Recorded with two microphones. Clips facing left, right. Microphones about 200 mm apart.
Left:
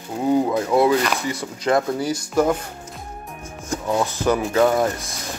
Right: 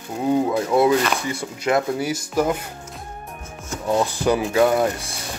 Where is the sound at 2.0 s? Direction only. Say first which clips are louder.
Left 2 dB; 10° right (ahead or behind).